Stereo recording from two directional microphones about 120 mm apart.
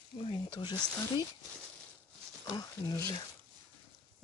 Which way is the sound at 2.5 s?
25° left (ahead or behind).